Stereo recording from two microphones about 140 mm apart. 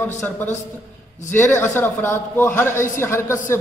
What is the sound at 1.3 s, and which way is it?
A woman's voice, 15° left (ahead or behind).